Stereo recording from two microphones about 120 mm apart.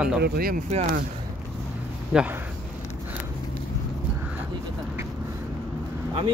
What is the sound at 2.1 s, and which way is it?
Speech, 15° right (ahead or behind).